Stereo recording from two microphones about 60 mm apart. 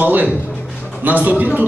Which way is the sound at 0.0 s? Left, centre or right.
Right.